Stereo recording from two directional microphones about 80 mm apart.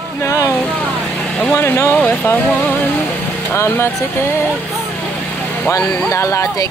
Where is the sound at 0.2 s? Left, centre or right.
Left.